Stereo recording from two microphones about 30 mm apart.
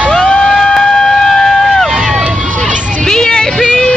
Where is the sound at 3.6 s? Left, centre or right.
Left.